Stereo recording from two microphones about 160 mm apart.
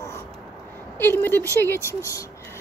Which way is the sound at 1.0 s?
15° left (ahead or behind).